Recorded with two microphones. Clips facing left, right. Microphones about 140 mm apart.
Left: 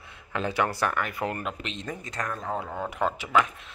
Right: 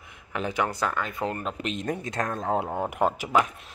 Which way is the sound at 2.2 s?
50° right (ahead or behind).